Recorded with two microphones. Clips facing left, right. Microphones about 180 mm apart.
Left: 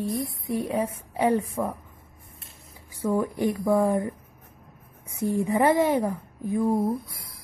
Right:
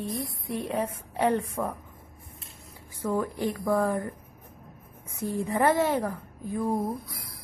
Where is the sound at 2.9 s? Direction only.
10° left (ahead or behind).